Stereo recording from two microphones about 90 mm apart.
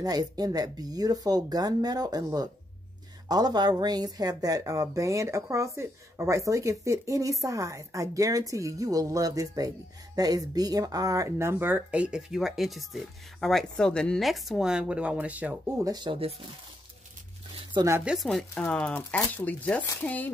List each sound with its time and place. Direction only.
0.0 s speech: 45° right (ahead or behind); by 15.8 s 20° right (ahead or behind)
15.8 s speech: 45° right (ahead or behind)
16.1 s speech: 90° right
18.0 s speech: centre (ahead or behind)
18.5 s speech: 10° left (ahead or behind)